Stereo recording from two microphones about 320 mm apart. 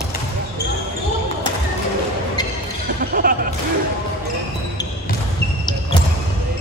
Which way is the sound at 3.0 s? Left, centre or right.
Right.